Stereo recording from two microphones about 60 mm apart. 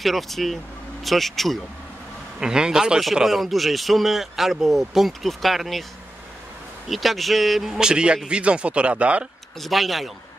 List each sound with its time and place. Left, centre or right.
0.0 s a man's voice: centre
2.4 s a man's voice: centre
6.9 s a man's voice: centre
7.8 s a man's voice: centre
9.6 s a man's voice: centre